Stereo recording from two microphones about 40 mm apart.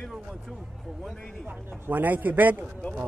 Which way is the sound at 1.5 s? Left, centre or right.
Right.